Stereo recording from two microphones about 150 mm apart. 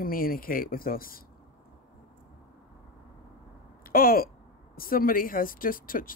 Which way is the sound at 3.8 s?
75° left (ahead or behind).